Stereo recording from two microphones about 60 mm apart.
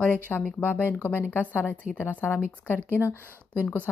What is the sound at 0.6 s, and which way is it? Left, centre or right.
A woman's voice, left.